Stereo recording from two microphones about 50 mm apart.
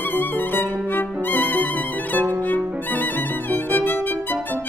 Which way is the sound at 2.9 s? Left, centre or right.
Left.